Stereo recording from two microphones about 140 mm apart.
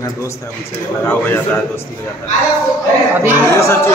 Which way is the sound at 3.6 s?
20° left (ahead or behind).